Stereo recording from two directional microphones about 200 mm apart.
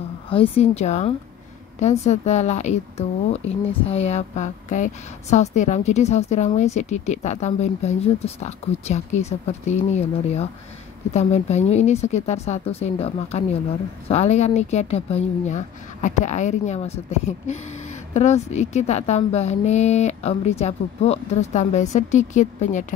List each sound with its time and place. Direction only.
0.3 s a woman's voice: 30° left (ahead or behind)